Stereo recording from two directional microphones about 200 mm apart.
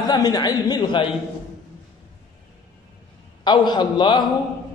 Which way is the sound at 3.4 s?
20° left (ahead or behind).